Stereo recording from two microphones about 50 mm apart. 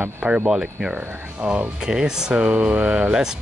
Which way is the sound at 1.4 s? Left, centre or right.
Right.